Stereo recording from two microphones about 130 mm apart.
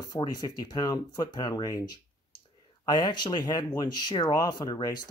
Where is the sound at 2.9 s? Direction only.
35° left (ahead or behind).